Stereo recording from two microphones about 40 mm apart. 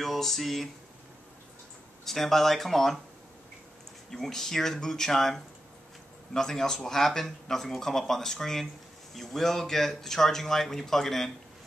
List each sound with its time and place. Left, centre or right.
0.0 s speech: centre
2.0 s speech: centre
4.1 s speech: centre